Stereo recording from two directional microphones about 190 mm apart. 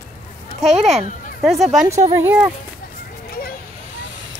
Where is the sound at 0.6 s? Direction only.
35° right (ahead or behind).